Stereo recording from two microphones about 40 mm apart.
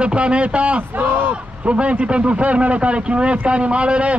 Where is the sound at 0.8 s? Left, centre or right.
Right.